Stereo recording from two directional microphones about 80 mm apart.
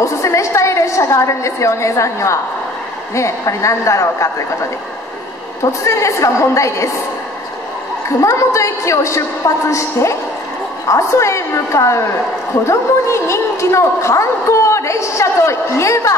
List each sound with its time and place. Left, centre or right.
0.0 s a sound: left
3.2 s a woman's voice: left
5.6 s a woman's voice: left
8.2 s a woman's voice: left